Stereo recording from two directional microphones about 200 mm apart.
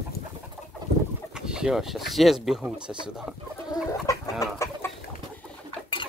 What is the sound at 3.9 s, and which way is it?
Chicken, 15° left (ahead or behind).